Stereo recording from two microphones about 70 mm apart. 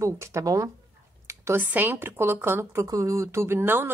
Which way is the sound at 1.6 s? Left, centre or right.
Right.